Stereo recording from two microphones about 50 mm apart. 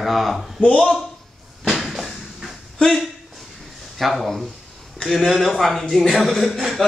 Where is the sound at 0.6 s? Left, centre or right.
Left.